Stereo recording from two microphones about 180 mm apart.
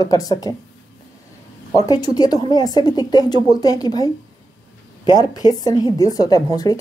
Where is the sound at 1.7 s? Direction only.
20° left (ahead or behind).